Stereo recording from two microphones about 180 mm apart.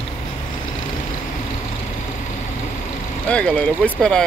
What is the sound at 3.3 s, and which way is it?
Speech, 5° left (ahead or behind).